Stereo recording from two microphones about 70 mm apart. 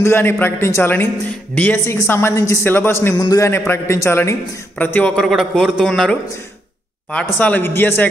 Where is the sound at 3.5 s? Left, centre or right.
Left.